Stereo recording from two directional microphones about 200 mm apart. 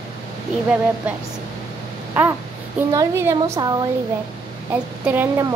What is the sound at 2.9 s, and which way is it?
Speech, 15° right (ahead or behind).